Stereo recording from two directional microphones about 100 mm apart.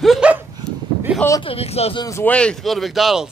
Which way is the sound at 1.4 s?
70° left (ahead or behind).